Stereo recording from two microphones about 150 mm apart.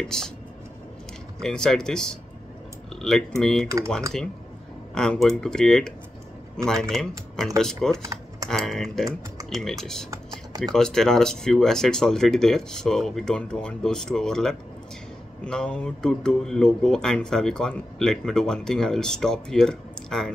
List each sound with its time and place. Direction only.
0.1 s speech: 5° left (ahead or behind)
1.4 s speech: 5° left (ahead or behind)
4.9 s speech: 5° left (ahead or behind)
8.0 s typing: 20° right (ahead or behind)
8.5 s speech: 5° left (ahead or behind)